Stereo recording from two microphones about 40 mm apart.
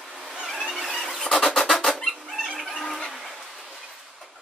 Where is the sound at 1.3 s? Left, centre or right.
Centre.